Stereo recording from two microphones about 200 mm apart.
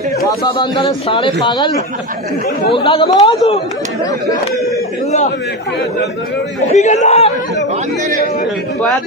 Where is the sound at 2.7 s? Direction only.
25° left (ahead or behind).